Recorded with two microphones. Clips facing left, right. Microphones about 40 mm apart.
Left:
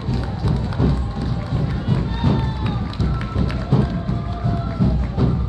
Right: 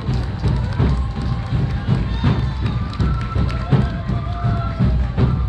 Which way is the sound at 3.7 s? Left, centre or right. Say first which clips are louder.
Even; right.